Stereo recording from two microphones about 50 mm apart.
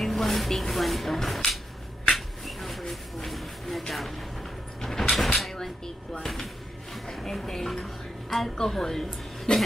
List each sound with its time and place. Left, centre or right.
0.0 s speech: centre
2.1 s a sound: centre
5.1 s cupboard open or close: centre
6.2 s speech: centre